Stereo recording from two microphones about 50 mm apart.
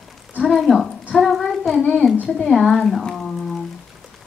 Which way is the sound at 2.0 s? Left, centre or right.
Centre.